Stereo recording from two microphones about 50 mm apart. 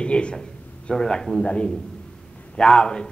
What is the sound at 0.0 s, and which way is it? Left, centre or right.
A man's voice, left.